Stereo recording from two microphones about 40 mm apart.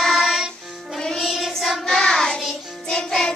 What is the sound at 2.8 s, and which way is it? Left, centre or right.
Music, centre.